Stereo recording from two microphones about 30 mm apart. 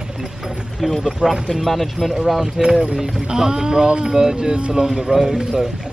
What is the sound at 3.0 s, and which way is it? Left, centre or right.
Speech, right.